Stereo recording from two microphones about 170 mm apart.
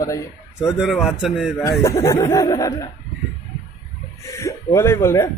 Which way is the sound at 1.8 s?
20° left (ahead or behind).